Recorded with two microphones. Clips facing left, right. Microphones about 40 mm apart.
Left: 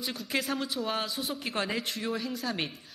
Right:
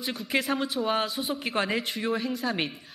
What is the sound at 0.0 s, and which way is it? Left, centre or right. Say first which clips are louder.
A woman's voice: right 4 dB; centre.